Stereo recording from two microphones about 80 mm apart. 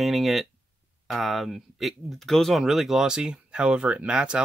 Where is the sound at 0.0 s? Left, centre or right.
Centre.